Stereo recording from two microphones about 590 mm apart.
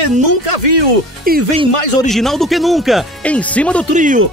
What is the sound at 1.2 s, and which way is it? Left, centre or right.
Speech, centre.